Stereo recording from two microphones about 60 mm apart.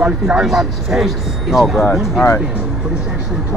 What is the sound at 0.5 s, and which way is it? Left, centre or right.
Speech, centre.